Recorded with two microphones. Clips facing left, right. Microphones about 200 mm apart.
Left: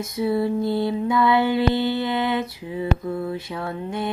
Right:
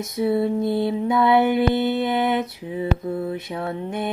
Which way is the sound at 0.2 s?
25° right (ahead or behind).